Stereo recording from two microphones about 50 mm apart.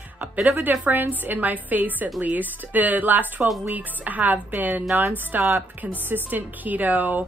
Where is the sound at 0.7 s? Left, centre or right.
Right.